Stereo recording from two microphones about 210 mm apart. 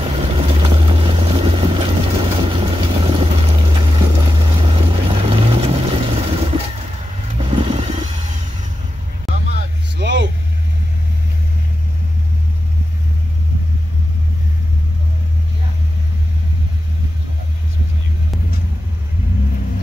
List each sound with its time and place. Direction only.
0.0 s vehicle: 25° right (ahead or behind)
9.3 s vehicle: 60° right (ahead or behind)